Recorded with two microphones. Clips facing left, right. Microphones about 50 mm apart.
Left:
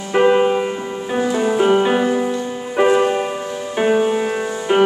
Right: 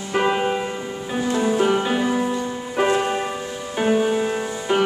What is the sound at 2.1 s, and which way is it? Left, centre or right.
Music, centre.